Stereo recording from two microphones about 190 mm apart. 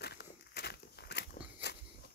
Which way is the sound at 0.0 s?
60° left (ahead or behind).